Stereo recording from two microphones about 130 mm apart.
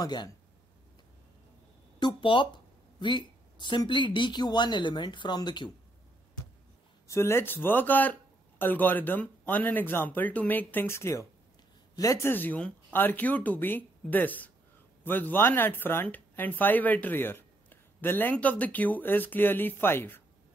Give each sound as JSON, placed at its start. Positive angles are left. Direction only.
{"t": 0.0, "sound": "speech", "side_deg": 35}
{"t": 2.0, "sound": "a woman's voice", "side_deg": 40}
{"t": 7.1, "sound": "speech", "side_deg": 20}